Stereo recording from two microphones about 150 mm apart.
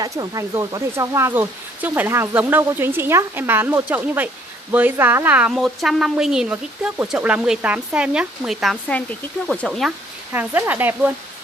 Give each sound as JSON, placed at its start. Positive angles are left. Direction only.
{"t": 0.0, "sound": "speech", "side_deg": -25}
{"t": 5.5, "sound": "speech", "side_deg": 0}
{"t": 10.3, "sound": "speech", "side_deg": -15}